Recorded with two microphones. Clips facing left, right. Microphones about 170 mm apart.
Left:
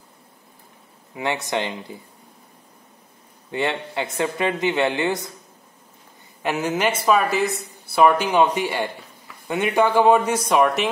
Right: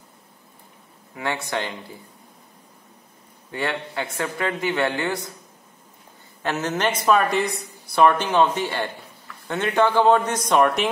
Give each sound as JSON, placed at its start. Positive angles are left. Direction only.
{"t": 1.1, "sound": "a man's voice", "side_deg": 20}
{"t": 3.5, "sound": "a man's voice", "side_deg": 20}
{"t": 6.4, "sound": "speech", "side_deg": 10}